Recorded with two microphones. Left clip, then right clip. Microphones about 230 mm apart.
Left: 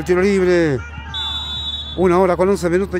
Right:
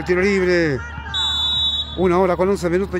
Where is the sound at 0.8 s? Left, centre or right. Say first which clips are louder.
Right 3 dB; right.